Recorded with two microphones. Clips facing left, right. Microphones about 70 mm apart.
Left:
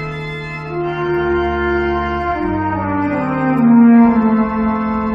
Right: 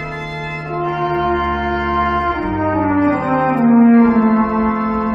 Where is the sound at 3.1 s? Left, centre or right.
Centre.